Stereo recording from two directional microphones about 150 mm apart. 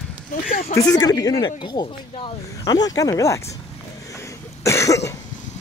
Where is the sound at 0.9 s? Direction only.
25° left (ahead or behind).